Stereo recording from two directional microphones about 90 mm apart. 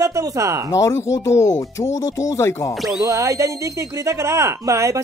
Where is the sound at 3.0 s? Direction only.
35° right (ahead or behind).